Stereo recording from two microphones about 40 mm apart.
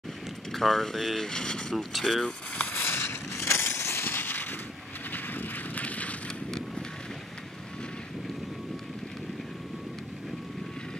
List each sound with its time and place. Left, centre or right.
0.5 s speech: centre
1.8 s speech: centre
2.2 s a sound: left
2.7 s a sound: left
5.1 s vehicle: left
5.8 s vehicle: left